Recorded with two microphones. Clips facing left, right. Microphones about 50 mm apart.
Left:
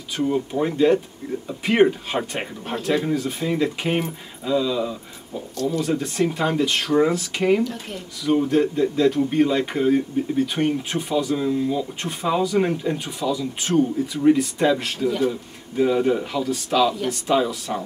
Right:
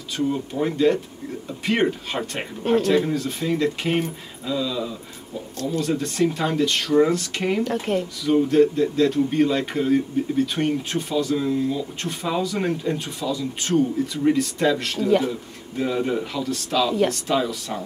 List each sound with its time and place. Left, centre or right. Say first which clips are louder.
0.2 s speech: left 2 dB; centre
7.6 s speech: right 6 dB; right
8.3 s speech: right 2 dB; centre